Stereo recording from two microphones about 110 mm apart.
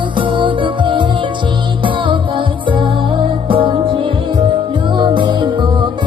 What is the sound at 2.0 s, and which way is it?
Music, 50° right (ahead or behind).